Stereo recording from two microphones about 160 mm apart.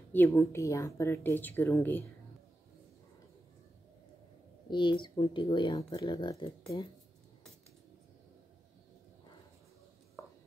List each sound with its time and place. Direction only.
0.1 s a woman's voice: 10° left (ahead or behind)
4.6 s speech: 30° left (ahead or behind)